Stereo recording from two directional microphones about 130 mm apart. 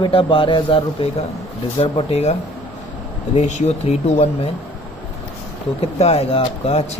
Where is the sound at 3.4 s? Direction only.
60° left (ahead or behind).